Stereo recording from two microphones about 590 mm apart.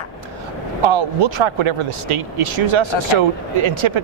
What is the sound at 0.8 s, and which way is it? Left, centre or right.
Speech, right.